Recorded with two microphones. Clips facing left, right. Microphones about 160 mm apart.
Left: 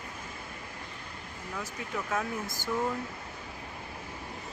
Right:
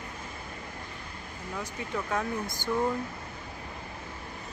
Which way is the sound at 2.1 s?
5° left (ahead or behind).